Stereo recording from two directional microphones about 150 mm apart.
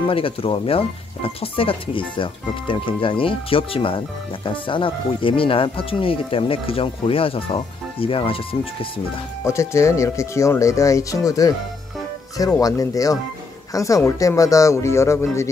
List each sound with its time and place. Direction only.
0.1 s speech: 35° left (ahead or behind)
9.4 s speech: 20° left (ahead or behind)
12.5 s speech: 25° left (ahead or behind)